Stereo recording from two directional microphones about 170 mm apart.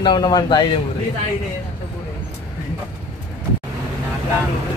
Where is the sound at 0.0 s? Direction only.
25° left (ahead or behind).